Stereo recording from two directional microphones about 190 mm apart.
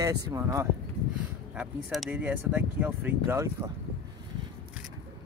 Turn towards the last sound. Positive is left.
turn(degrees=-15)  # may be behind; listen again after turning